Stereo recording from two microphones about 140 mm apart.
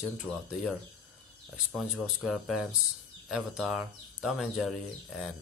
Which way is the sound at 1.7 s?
Centre (ahead or behind).